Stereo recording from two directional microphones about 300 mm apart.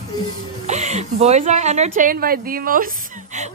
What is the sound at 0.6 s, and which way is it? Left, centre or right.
A woman's voice, right.